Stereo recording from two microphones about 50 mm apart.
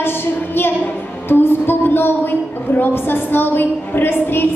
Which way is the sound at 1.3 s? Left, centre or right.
Left.